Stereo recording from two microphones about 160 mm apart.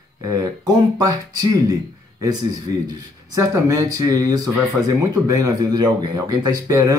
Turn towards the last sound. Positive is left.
turn(degrees=-20)  # may be behind; listen again after turning